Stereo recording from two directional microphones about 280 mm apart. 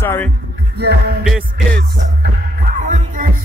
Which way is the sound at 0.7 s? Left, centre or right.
Right.